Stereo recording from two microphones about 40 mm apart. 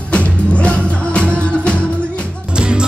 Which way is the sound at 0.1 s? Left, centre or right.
Left.